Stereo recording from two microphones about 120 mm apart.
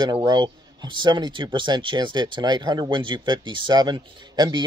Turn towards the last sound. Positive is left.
turn(degrees=-35)  # may be behind; listen again after turning